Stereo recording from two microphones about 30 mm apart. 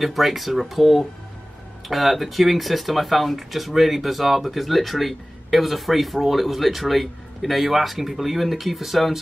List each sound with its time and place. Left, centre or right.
0.0 s speech: centre